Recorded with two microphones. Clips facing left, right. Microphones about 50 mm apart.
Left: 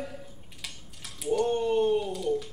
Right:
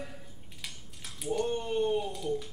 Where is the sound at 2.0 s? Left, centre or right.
Left.